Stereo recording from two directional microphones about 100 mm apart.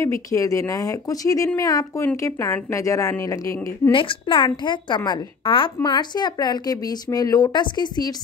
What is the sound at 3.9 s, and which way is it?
A woman's voice, 60° left (ahead or behind).